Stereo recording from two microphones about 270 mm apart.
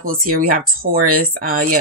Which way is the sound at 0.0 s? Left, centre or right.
Right.